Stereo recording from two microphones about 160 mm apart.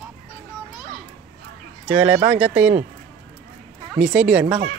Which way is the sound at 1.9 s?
10° right (ahead or behind).